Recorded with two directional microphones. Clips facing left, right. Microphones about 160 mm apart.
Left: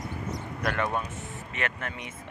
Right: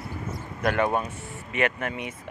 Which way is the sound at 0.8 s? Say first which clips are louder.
Right 6 dB; 30° right (ahead or behind).